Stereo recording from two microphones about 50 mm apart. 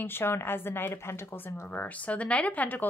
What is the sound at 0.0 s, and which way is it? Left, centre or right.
Speech, left.